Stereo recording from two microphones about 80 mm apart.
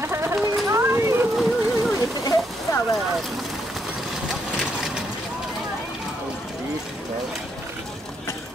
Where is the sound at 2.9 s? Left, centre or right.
Centre.